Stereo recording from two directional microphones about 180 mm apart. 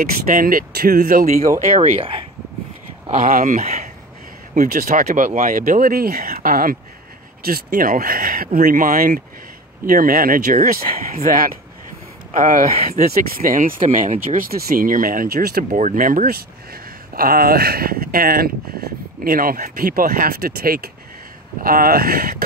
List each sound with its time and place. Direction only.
0.0 s speech: 50° right (ahead or behind)
1.8 s speech: 30° right (ahead or behind)
3.1 s speech: 45° right (ahead or behind)